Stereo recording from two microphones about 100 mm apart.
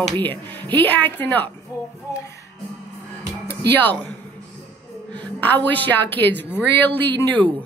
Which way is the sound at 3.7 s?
15° left (ahead or behind).